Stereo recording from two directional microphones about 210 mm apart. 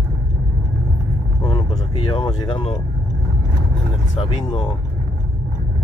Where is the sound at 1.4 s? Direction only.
25° left (ahead or behind).